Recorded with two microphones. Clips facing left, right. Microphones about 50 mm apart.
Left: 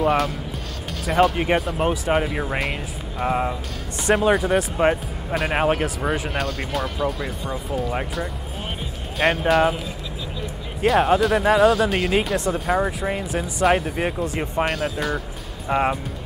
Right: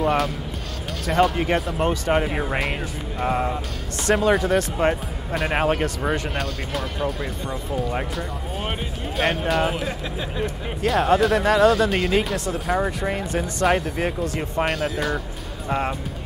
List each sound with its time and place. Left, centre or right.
0.0 s speech: centre
2.2 s speech: centre
10.9 s speech: centre
14.6 s speech: centre
15.7 s speech: centre